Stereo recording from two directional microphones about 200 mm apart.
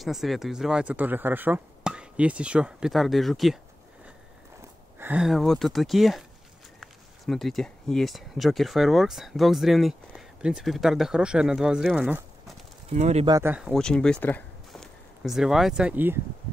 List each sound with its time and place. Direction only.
0.0 s speech: centre (ahead or behind)
4.6 s speech: 10° right (ahead or behind)
12.9 s speech: 35° right (ahead or behind)
13.3 s speech: 10° right (ahead or behind)
13.7 s speech: 5° left (ahead or behind)